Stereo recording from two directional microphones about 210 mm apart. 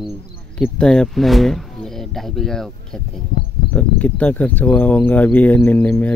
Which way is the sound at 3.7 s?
5° left (ahead or behind).